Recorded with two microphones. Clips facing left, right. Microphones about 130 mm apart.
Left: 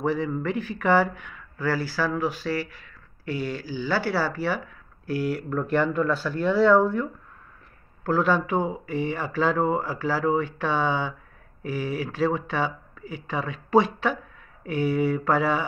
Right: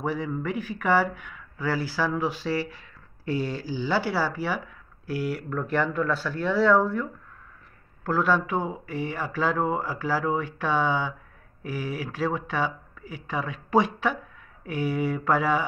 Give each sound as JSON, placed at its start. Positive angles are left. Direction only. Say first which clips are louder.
{"t": 0.0, "sound": "speech", "louder": "left 3 dB", "side_deg": -10}
{"t": 1.7, "sound": "speech", "louder": "left 1 dB", "side_deg": -20}